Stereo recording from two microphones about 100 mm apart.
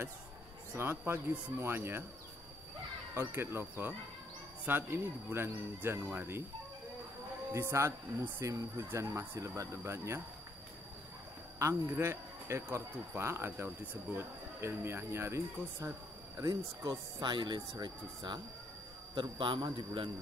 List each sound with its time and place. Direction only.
0.7 s speech: 25° right (ahead or behind)
3.3 s speech: 20° right (ahead or behind)
7.5 s speech: 30° right (ahead or behind)
11.5 s speech: 30° right (ahead or behind)
16.3 s a man's voice: 40° right (ahead or behind)